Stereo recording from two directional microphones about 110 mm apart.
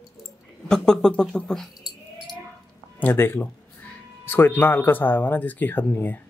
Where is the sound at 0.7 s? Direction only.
5° left (ahead or behind).